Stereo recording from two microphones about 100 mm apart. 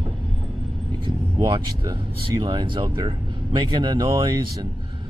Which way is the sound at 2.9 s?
40° right (ahead or behind).